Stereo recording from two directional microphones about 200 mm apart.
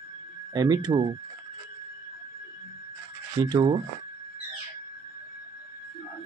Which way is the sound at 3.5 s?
25° right (ahead or behind).